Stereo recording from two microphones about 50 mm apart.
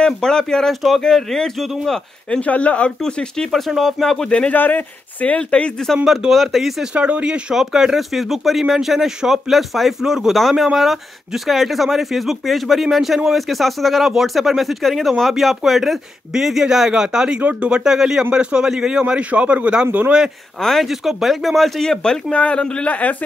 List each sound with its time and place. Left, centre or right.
0.0 s speech: centre
2.4 s speech: left
3.5 s speech: centre
4.3 s speech: left
4.6 s speech: left
6.0 s speech: centre
6.9 s a man's voice: right
7.5 s speech: centre
17.4 s a man's voice: right
20.6 s speech: centre
20.9 s speech: centre
22.3 s speech: left